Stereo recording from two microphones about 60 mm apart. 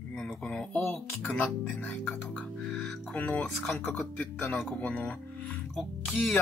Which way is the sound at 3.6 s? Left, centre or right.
Centre.